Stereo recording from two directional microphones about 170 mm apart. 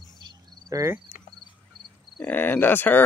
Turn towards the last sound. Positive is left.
turn(degrees=10)  # may be behind; listen again after turning